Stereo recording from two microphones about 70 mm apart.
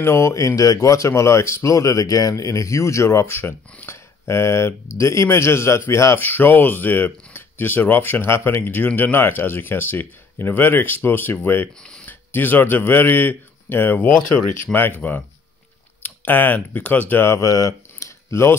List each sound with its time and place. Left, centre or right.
0.0 s speech: left
6.1 s speech: left
11.8 s a sound: centre
12.1 s speech: left
16.0 s speech: left
17.3 s speech: left